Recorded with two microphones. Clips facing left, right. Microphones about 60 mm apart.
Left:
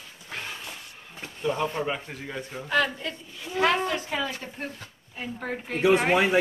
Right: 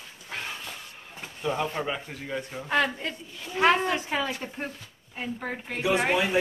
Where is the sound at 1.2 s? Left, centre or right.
Centre.